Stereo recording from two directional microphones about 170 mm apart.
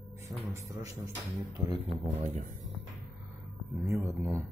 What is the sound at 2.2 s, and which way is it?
Speech, 45° right (ahead or behind).